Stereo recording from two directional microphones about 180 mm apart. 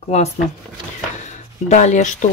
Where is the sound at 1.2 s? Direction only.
40° left (ahead or behind).